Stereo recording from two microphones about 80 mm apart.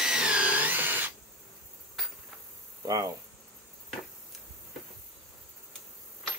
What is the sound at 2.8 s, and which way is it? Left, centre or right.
Insect, right.